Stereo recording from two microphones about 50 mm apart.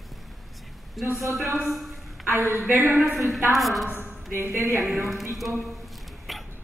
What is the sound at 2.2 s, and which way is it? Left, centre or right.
Speech, right.